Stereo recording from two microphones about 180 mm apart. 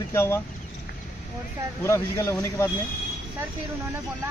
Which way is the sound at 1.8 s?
15° left (ahead or behind).